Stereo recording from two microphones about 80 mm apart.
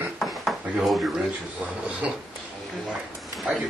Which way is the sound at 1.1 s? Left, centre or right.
Centre.